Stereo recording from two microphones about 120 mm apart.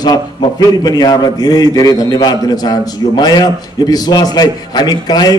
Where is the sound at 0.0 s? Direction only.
35° left (ahead or behind).